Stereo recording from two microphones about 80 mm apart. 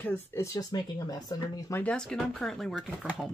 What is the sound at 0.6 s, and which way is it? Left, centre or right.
Speech, left.